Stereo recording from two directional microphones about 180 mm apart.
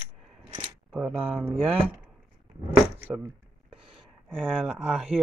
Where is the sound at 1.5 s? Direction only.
30° right (ahead or behind).